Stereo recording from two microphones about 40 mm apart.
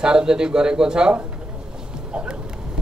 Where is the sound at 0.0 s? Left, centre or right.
Right.